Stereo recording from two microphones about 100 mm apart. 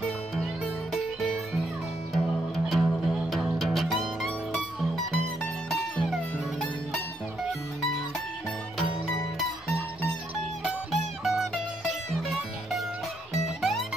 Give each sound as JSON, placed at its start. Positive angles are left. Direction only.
{"t": 0.9, "sound": "music", "side_deg": 0}
{"t": 10.6, "sound": "music", "side_deg": -5}
{"t": 13.3, "sound": "music", "side_deg": 0}